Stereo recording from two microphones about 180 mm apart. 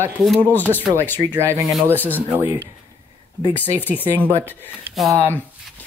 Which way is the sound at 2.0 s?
10° left (ahead or behind).